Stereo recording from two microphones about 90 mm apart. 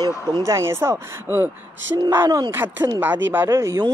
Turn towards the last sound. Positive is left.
turn(degrees=-35)  # may be behind; listen again after turning